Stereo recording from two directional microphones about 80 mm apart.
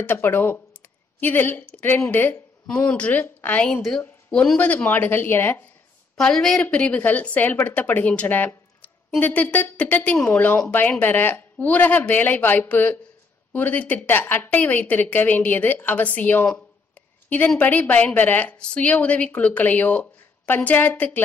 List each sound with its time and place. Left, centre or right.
0.0 s a woman's voice: left
4.3 s speech: centre
4.6 s a woman's voice: left
6.1 s a woman's voice: centre
6.6 s a woman's voice: centre
17.6 s a woman's voice: centre